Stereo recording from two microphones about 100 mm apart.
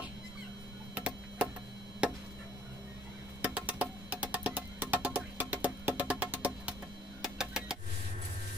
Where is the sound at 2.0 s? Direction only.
10° right (ahead or behind).